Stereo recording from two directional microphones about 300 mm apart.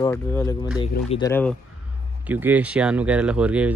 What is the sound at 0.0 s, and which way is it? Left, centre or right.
Speech, centre.